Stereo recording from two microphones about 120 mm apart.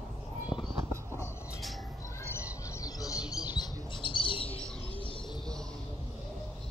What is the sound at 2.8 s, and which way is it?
Bird, 30° left (ahead or behind).